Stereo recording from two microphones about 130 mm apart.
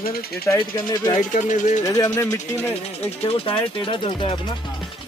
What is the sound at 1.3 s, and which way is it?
Speech, 75° left (ahead or behind).